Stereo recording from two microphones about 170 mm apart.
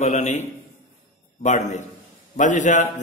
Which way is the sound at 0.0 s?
45° left (ahead or behind).